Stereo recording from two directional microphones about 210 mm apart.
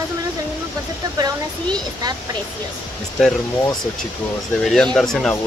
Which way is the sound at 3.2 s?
5° left (ahead or behind).